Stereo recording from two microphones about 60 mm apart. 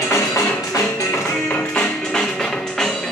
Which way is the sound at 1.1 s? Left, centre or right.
Left.